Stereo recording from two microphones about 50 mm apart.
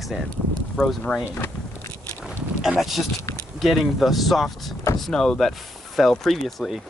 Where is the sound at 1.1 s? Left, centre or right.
Left.